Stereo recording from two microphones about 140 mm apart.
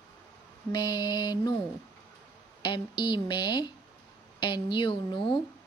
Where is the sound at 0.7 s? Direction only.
30° left (ahead or behind).